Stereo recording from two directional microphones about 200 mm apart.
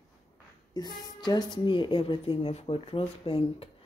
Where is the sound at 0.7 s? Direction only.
20° left (ahead or behind).